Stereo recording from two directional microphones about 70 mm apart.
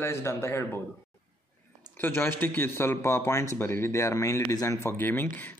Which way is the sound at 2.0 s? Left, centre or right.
Left.